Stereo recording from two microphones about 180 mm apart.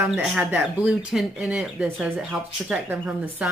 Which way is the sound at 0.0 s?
5° right (ahead or behind).